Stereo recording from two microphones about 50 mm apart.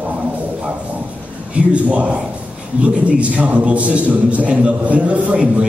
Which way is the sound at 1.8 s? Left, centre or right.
Right.